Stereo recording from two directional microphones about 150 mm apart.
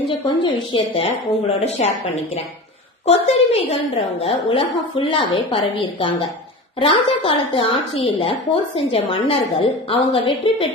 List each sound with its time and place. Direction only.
0.4 s a woman's voice: 35° left (ahead or behind)
1.6 s a woman's voice: 45° left (ahead or behind)
3.1 s a woman's voice: 45° left (ahead or behind)